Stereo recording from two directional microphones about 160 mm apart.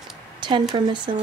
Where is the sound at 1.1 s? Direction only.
30° right (ahead or behind).